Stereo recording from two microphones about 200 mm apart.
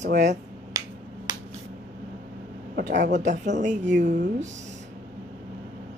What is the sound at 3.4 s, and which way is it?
Speech, 40° right (ahead or behind).